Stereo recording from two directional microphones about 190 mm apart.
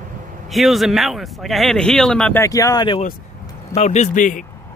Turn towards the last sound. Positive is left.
turn(degrees=40)  # may be behind; listen again after turning